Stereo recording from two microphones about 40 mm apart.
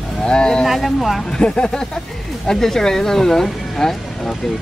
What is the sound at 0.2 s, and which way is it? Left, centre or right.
Speech, left.